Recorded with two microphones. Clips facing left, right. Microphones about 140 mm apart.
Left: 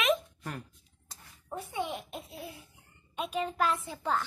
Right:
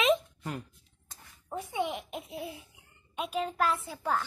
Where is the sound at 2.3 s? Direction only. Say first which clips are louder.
Right 5 dB; 20° right (ahead or behind).